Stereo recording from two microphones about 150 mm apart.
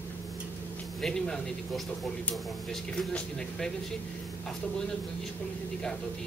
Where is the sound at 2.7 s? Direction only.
5° left (ahead or behind).